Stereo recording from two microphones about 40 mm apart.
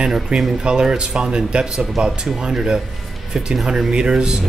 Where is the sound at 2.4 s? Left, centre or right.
Centre.